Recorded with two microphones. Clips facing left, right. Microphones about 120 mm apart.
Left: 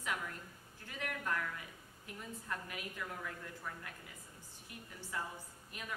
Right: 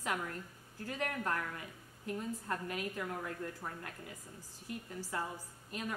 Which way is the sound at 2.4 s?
40° right (ahead or behind).